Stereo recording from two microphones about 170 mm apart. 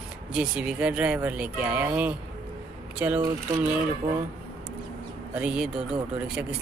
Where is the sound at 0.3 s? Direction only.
5° right (ahead or behind).